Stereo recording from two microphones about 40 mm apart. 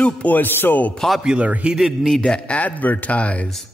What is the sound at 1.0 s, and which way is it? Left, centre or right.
Speech, centre.